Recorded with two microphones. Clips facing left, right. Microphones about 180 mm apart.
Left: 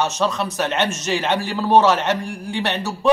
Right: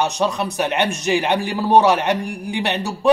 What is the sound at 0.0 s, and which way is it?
A man's voice, 15° right (ahead or behind).